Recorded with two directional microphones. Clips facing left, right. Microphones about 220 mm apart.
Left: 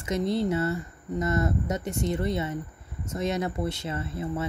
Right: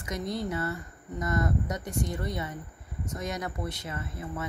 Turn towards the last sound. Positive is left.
turn(degrees=30)  # may be behind; listen again after turning